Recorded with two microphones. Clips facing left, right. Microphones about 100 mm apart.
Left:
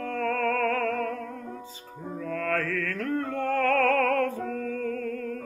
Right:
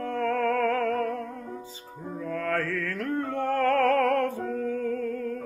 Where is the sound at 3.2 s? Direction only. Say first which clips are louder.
Right 2 dB; 20° right (ahead or behind).